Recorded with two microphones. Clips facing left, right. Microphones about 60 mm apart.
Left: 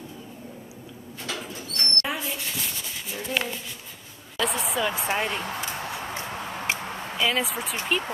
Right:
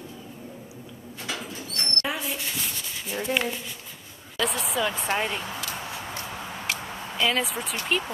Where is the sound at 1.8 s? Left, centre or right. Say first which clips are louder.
Left 1 dB; centre.